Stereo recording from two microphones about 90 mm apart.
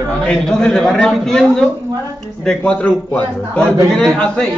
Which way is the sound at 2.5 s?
15° left (ahead or behind).